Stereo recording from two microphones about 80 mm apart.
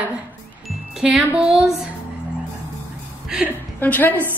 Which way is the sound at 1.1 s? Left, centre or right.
Centre.